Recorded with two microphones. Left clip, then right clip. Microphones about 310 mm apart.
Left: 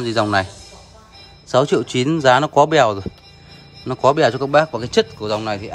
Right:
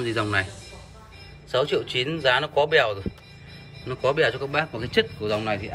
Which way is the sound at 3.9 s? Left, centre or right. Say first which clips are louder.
Left 7 dB; centre.